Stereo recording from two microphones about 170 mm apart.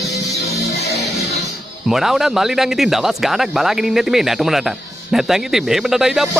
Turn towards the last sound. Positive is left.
turn(degrees=0)  # may be behind; listen again after turning